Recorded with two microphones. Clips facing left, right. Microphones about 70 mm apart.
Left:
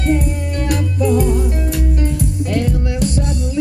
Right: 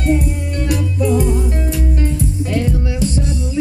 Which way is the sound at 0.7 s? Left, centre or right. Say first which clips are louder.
Even; left.